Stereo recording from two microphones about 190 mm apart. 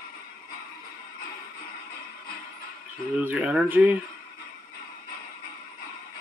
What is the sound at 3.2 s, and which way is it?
Speech, 5° right (ahead or behind).